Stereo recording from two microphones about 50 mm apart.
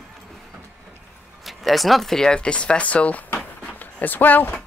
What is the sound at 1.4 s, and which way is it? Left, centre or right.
Speech, centre.